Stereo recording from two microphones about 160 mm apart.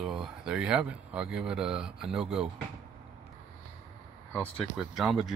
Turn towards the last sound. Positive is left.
turn(degrees=0)  # may be behind; listen again after turning